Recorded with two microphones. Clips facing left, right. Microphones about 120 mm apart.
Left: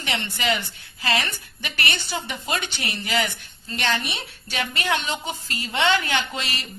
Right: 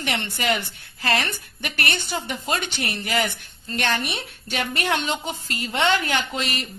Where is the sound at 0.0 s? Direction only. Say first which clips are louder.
Right 1 dB; 50° right (ahead or behind).